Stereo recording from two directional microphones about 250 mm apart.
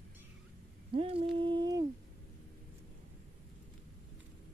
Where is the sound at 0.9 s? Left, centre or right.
Right.